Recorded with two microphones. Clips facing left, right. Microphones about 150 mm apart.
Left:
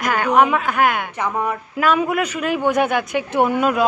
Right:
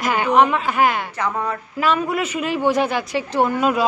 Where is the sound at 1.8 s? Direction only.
Centre (ahead or behind).